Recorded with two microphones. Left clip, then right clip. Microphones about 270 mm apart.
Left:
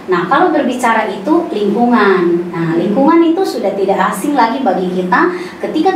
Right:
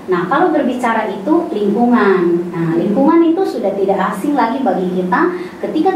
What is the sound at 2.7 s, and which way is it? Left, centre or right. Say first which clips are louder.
Speech: left 2 dB; right.